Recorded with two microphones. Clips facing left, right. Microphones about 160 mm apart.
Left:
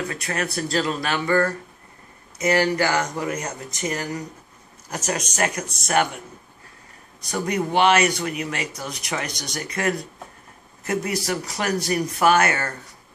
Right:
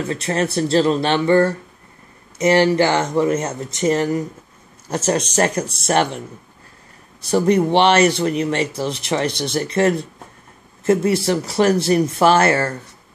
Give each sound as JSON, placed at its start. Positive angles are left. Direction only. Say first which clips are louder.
{"t": 0.1, "sound": "speech", "louder": "right 7 dB", "side_deg": -30}
{"t": 7.2, "sound": "speech", "louder": "right 9 dB", "side_deg": -30}